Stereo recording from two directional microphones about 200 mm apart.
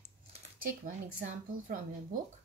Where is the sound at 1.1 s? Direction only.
40° right (ahead or behind).